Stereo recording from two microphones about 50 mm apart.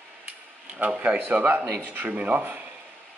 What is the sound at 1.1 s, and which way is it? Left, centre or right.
Speech, right.